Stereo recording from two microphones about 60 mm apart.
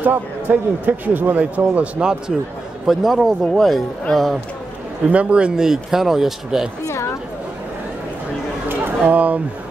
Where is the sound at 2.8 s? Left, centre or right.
Centre.